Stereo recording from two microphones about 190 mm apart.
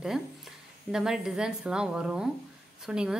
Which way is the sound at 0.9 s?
5° right (ahead or behind).